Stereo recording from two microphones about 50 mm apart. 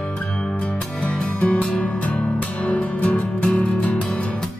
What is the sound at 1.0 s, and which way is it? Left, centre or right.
Music, left.